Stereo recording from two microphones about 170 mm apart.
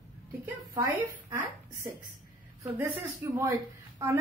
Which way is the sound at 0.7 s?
20° right (ahead or behind).